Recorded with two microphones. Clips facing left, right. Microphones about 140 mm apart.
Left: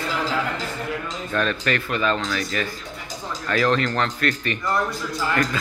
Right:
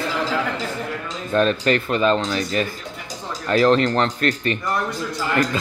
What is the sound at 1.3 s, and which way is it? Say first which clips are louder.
A man's voice: right 6 dB; 25° right (ahead or behind).